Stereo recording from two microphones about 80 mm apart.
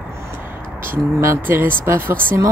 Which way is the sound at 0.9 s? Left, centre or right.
Right.